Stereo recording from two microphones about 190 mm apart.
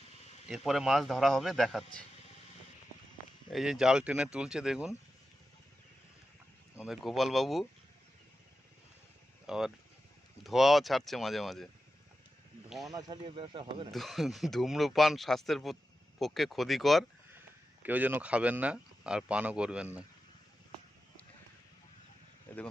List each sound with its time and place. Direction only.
0.5 s speech: centre (ahead or behind)
3.4 s speech: centre (ahead or behind)
6.8 s speech: centre (ahead or behind)
9.5 s speech: centre (ahead or behind)
12.9 s speech: 25° right (ahead or behind)
13.9 s speech: centre (ahead or behind)
22.5 s speech: 10° left (ahead or behind)